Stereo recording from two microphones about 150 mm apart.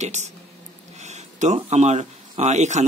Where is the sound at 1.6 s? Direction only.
45° right (ahead or behind).